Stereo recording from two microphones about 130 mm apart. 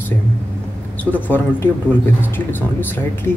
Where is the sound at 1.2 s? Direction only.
15° left (ahead or behind).